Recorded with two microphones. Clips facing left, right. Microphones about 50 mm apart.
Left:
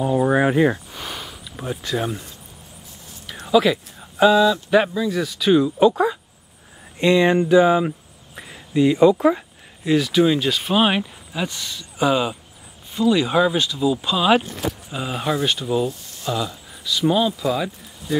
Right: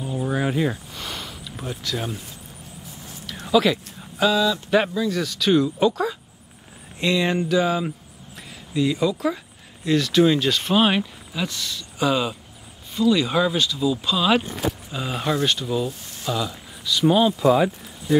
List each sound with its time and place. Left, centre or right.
0.0 s a sound: left
0.5 s speech: left
0.9 s a sound: centre
2.0 s speech: centre
3.4 s speech: centre
4.2 s speech: centre
4.6 s speech: centre; by 9.4 s left
9.8 s speech: centre